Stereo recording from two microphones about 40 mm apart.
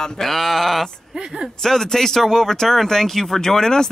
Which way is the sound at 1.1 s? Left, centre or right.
Right.